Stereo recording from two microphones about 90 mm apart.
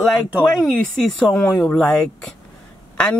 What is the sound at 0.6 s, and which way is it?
Speech, centre (ahead or behind).